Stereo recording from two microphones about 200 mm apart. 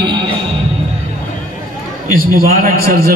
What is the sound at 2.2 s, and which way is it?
Speech, 45° right (ahead or behind).